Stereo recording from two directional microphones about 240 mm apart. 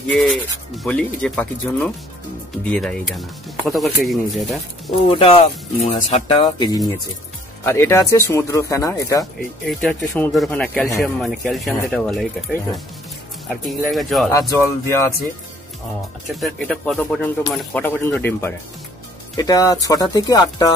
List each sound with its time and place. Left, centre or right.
0.1 s speech: centre
5.1 s speech: left
9.7 s speech: centre
16.3 s speech: centre